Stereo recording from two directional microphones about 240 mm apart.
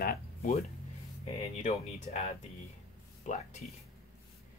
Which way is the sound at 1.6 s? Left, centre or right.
Left.